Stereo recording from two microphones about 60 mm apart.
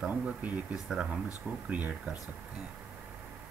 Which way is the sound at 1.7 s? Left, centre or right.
Right.